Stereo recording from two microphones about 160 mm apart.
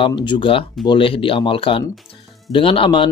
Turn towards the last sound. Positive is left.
turn(degrees=30)  # may be behind; listen again after turning